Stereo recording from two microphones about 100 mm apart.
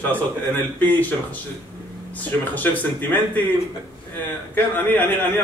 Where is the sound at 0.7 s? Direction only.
20° left (ahead or behind).